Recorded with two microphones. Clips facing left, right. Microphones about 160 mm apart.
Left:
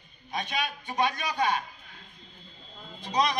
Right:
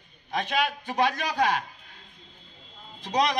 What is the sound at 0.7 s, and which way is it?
Speech, 90° right.